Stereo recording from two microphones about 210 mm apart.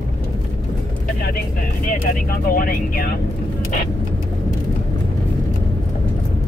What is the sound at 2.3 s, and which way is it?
Speech, 45° left (ahead or behind).